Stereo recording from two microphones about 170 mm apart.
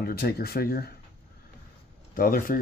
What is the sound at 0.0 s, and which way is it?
Speech, 65° left (ahead or behind).